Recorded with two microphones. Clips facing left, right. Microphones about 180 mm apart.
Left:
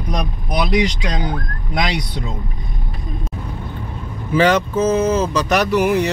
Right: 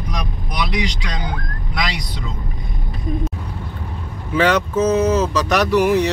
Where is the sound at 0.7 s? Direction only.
50° left (ahead or behind).